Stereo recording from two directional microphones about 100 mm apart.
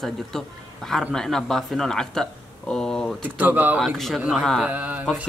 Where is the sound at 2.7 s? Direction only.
5° left (ahead or behind).